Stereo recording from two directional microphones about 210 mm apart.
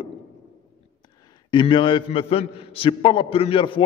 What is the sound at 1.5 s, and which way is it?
A man's voice, 20° left (ahead or behind).